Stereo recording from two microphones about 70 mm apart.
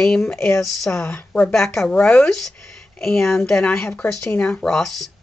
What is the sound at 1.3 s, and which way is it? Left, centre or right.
Speech, centre.